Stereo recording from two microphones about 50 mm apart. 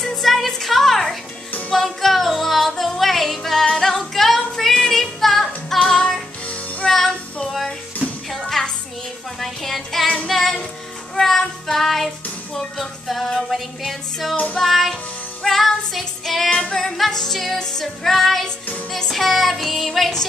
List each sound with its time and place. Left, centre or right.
0.2 s music: centre
6.9 s child singing: centre
7.4 s music: centre
11.1 s child singing: centre
12.5 s music: centre
14.3 s music: left
14.6 s music: centre